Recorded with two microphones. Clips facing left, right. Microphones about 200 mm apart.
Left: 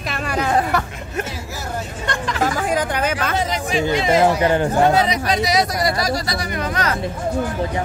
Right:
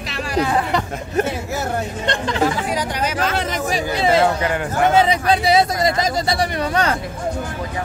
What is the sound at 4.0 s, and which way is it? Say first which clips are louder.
Speech: right 2 dB; 30° right (ahead or behind).